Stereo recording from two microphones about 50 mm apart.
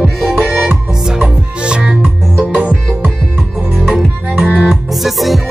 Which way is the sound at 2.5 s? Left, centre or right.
Right.